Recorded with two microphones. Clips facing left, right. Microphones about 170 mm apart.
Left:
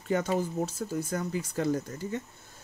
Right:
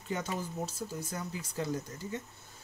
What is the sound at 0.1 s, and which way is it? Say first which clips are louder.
Speech: left 8 dB; 55° left (ahead or behind).